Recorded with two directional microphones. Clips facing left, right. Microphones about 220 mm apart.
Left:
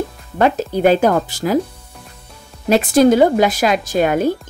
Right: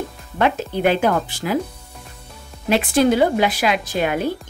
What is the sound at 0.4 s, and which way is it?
Speech, 40° left (ahead or behind).